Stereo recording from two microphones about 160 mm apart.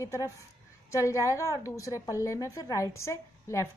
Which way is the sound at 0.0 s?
15° left (ahead or behind).